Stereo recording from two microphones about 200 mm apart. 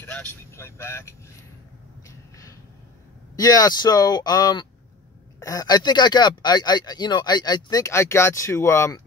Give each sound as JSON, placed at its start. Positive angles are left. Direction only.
{"t": 0.0, "sound": "speech", "side_deg": 10}
{"t": 2.0, "sound": "a sound", "side_deg": 15}
{"t": 3.3, "sound": "speech", "side_deg": 20}